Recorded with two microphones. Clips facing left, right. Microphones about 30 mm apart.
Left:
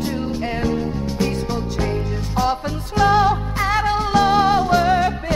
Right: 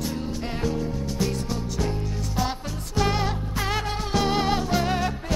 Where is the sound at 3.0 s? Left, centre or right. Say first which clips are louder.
Left 8 dB; left.